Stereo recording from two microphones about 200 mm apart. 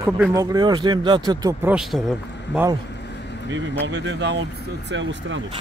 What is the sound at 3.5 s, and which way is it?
Speech, 60° right (ahead or behind).